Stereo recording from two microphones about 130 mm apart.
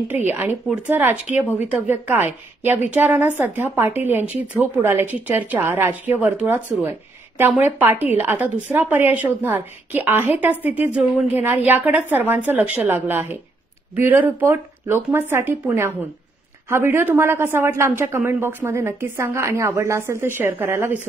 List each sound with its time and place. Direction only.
0.1 s a woman's voice: 15° right (ahead or behind)